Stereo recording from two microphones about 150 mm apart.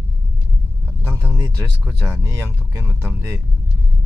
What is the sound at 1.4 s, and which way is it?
Speech, 20° right (ahead or behind).